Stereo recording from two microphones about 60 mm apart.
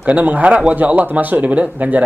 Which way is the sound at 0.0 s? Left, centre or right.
Right.